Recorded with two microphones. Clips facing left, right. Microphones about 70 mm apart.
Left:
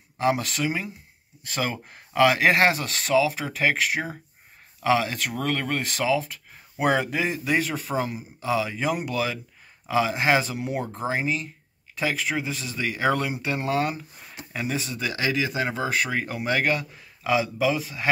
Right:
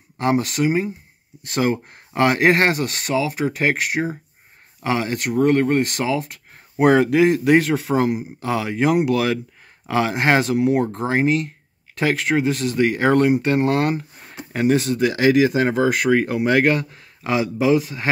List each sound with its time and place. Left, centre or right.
0.2 s speech: right
4.8 s speech: right
8.0 s speech: right
14.1 s a sound: right
14.5 s speech: right